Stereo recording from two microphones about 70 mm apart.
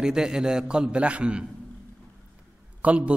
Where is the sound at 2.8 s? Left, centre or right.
Centre.